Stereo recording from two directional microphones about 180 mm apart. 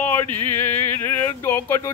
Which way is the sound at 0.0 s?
10° left (ahead or behind).